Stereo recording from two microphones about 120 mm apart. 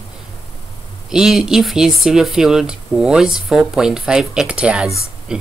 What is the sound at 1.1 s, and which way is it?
Speech, 5° right (ahead or behind).